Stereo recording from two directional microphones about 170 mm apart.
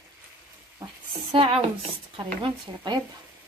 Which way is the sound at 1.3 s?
35° right (ahead or behind).